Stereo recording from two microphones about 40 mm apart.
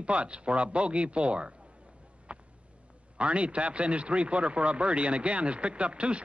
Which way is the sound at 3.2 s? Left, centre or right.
Right.